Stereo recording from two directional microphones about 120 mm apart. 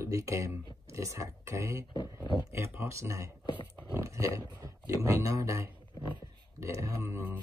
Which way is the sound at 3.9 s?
25° right (ahead or behind).